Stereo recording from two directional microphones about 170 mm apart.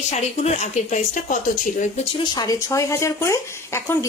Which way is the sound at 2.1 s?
25° left (ahead or behind).